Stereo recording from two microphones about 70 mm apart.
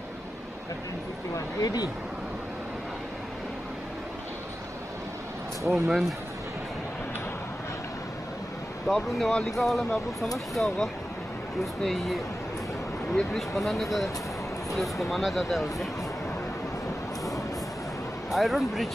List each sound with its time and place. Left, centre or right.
1.3 s speech: left
5.7 s speech: centre
8.8 s speech: centre
18.3 s speech: centre